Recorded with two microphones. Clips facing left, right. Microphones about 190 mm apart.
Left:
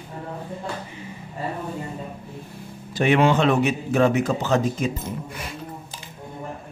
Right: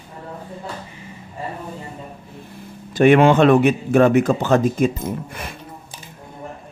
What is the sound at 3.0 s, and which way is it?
Speech, 55° right (ahead or behind).